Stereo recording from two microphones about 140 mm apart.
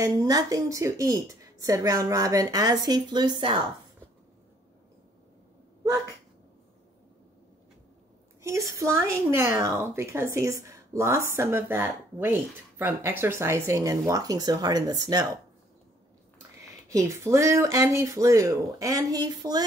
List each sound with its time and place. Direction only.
0.0 s speech: 25° right (ahead or behind)
8.4 s a woman's voice: 20° right (ahead or behind)
16.9 s speech: 20° right (ahead or behind)